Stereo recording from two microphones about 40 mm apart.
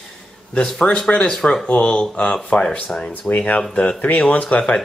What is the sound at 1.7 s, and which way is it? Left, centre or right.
Speech, left.